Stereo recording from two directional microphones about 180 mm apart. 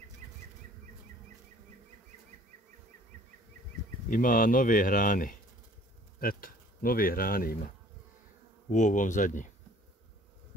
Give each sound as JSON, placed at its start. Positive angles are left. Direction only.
{"t": 4.1, "sound": "speech", "side_deg": 50}
{"t": 8.6, "sound": "speech", "side_deg": 45}